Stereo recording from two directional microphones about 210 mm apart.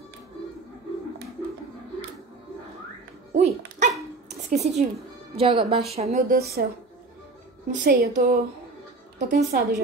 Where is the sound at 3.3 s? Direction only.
30° right (ahead or behind).